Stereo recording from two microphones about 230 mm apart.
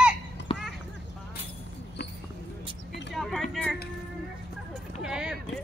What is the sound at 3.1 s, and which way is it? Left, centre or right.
Vehicle, centre.